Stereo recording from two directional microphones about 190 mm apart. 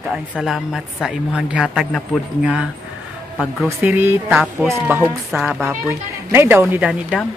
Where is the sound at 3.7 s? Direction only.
10° right (ahead or behind).